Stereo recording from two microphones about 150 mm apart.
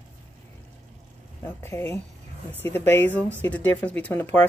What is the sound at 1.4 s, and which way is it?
Speech, 15° left (ahead or behind).